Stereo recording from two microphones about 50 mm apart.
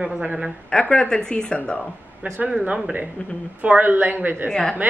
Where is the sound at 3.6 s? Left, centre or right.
Right.